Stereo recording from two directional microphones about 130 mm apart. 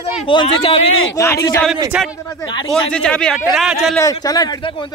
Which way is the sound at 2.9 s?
10° left (ahead or behind).